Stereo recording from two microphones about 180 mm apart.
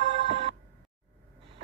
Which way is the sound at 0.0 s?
35° right (ahead or behind).